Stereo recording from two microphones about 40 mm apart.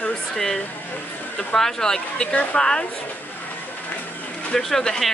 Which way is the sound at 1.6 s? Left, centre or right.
Centre.